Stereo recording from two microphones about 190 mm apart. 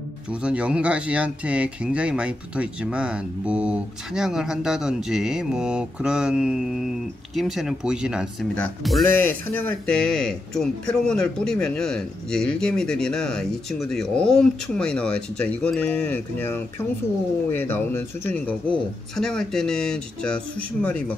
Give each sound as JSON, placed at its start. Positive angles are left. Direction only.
{"t": 0.3, "sound": "speech", "side_deg": -5}